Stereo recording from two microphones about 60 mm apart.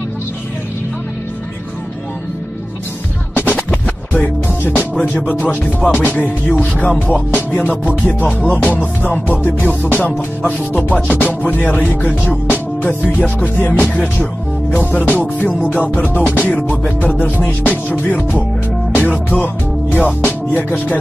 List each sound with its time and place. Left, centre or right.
3.5 s music: left
14.9 s music: left
16.3 s music: left